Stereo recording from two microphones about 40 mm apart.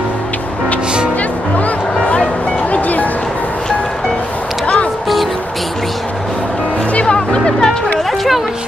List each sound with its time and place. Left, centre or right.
2.7 s music: left
7.2 s music: centre